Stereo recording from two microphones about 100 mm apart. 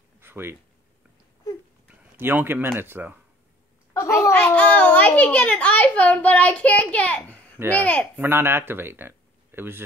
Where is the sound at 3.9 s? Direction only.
30° left (ahead or behind).